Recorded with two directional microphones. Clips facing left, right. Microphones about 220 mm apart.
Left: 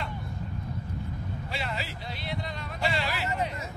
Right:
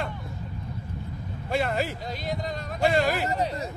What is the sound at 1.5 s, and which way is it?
Speech, 50° right (ahead or behind).